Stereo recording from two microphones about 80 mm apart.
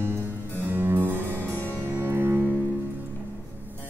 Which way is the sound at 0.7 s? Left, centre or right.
Right.